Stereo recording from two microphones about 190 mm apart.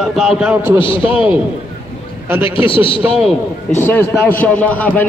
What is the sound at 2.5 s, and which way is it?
Speech, 25° left (ahead or behind).